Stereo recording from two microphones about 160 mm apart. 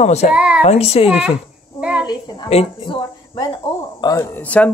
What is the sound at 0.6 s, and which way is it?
Speech, 40° left (ahead or behind).